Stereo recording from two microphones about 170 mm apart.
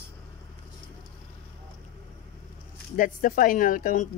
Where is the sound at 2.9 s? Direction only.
50° left (ahead or behind).